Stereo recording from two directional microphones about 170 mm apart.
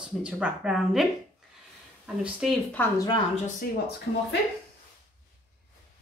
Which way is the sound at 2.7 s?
20° left (ahead or behind).